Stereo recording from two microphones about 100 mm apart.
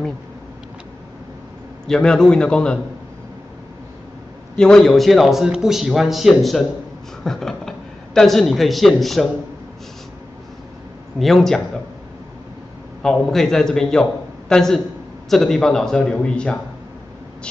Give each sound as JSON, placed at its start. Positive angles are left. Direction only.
{"t": 1.9, "sound": "a man's voice", "side_deg": 5}
{"t": 4.6, "sound": "a man's voice", "side_deg": 5}
{"t": 11.1, "sound": "speech", "side_deg": 5}
{"t": 13.0, "sound": "speech", "side_deg": 5}